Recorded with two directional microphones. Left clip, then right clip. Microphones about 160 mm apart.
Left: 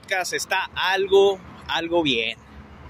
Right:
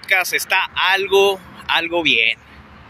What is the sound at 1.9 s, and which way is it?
Speech, 35° left (ahead or behind).